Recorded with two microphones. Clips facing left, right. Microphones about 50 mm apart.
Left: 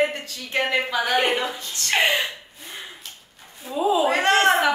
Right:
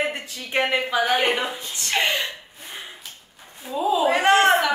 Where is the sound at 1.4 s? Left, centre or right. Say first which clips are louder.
Even; centre.